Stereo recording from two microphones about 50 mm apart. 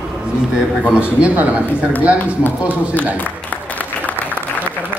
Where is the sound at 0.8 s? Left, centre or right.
Right.